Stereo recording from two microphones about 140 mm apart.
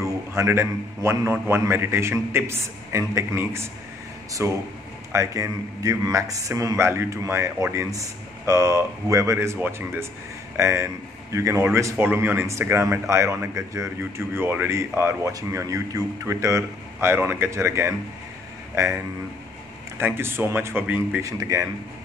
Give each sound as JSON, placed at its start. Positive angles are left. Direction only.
{"t": 0.0, "sound": "a man's voice", "side_deg": -20}
{"t": 20.0, "sound": "speech", "side_deg": -15}
{"t": 21.2, "sound": "a man's voice", "side_deg": -25}